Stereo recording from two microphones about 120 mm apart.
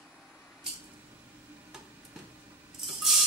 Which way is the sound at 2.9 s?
Centre (ahead or behind).